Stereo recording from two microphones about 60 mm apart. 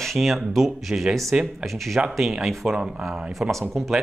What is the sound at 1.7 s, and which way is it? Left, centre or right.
Speech, centre.